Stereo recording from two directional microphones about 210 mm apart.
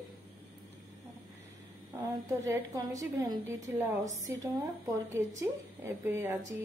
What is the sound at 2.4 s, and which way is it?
A woman's voice, 15° right (ahead or behind).